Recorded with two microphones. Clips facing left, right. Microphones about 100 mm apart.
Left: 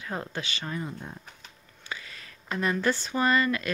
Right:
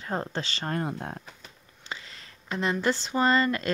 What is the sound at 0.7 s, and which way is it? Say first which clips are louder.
Speech: right 4 dB; 65° right (ahead or behind).